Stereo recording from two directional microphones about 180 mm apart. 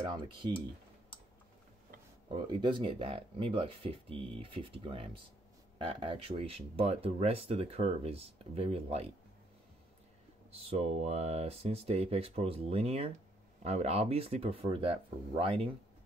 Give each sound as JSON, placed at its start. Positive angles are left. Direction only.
{"t": 0.0, "sound": "speech", "side_deg": -25}
{"t": 2.3, "sound": "speech", "side_deg": -25}
{"t": 10.5, "sound": "speech", "side_deg": -35}